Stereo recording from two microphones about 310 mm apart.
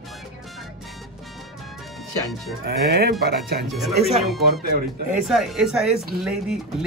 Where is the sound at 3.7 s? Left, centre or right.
Centre.